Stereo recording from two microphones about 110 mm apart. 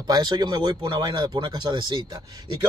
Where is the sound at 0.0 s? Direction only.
35° right (ahead or behind).